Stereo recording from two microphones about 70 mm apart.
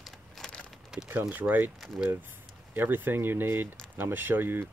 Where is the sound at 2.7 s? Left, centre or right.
Right.